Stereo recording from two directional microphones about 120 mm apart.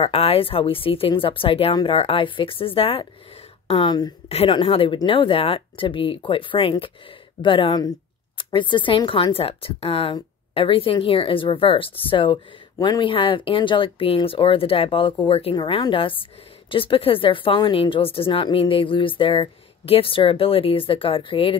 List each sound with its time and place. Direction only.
0.0 s speech: 50° left (ahead or behind); by 4.1 s 35° left (ahead or behind)
4.3 s speech: 50° left (ahead or behind)
15.5 s speech: 35° left (ahead or behind)